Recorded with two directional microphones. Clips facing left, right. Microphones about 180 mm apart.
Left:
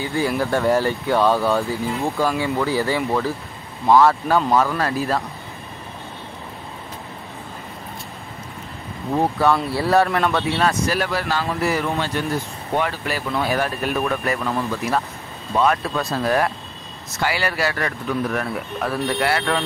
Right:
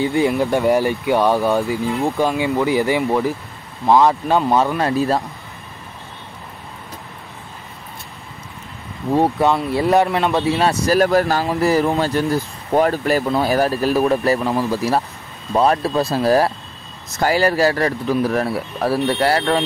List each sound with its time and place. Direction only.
0.0 s speech: 20° right (ahead or behind)
9.1 s speech: 25° right (ahead or behind)
10.4 s speech: 30° right (ahead or behind)